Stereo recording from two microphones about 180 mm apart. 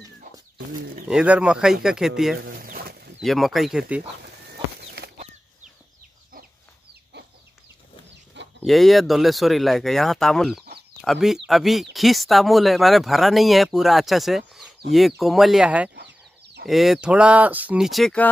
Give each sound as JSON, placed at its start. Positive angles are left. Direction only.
{"t": 1.0, "sound": "speech", "side_deg": -5}
{"t": 2.4, "sound": "a sound", "side_deg": -55}
{"t": 3.2, "sound": "speech", "side_deg": 0}
{"t": 8.6, "sound": "speech", "side_deg": 0}